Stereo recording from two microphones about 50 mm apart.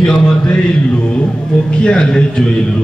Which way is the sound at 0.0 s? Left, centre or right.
Centre.